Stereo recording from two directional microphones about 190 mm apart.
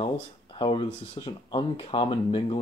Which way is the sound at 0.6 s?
25° left (ahead or behind).